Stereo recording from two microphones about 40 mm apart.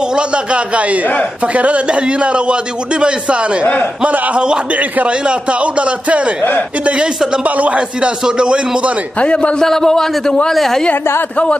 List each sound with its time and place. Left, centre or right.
0.1 s a man's voice: right
7.4 s a man's voice: right
8.3 s a man's voice: right
9.2 s a man's voice: left
9.6 s a man's voice: centre